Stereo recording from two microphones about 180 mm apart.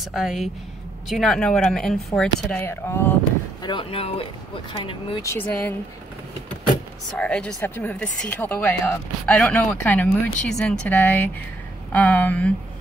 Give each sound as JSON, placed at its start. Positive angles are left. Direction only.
{"t": 0.1, "sound": "speech", "side_deg": 0}
{"t": 3.6, "sound": "speech", "side_deg": 30}
{"t": 5.2, "sound": "speech", "side_deg": 10}
{"t": 7.2, "sound": "speech", "side_deg": 5}